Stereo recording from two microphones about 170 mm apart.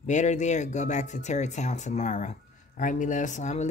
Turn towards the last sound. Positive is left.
turn(degrees=45)  # may be behind; listen again after turning